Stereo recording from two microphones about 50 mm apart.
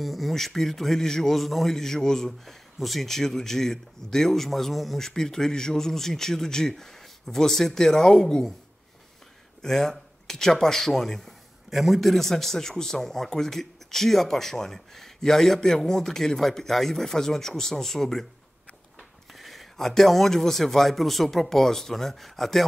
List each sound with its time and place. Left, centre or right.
0.0 s speech: centre
9.6 s speech: centre
19.3 s speech: centre